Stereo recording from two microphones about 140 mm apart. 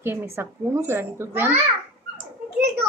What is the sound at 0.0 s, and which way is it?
A woman's voice, 15° right (ahead or behind).